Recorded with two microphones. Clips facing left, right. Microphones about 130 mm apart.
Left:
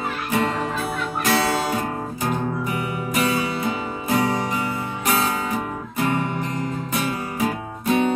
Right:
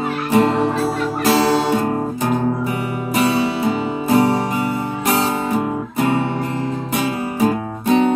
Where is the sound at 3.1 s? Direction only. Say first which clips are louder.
Right 5 dB; 30° right (ahead or behind).